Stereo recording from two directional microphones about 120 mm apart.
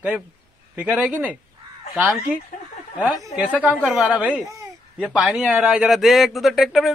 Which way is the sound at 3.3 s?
10° right (ahead or behind).